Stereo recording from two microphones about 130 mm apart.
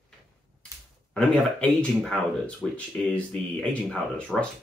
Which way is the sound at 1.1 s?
5° left (ahead or behind).